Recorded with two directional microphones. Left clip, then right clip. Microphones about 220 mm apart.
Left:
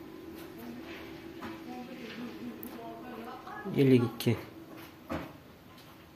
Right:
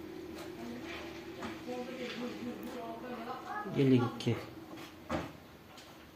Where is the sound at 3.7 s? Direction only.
30° left (ahead or behind).